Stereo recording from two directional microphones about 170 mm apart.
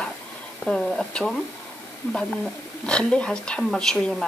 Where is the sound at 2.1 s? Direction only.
5° left (ahead or behind).